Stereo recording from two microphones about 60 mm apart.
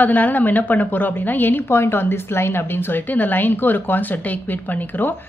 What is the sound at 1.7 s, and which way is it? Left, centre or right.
A woman's voice, left.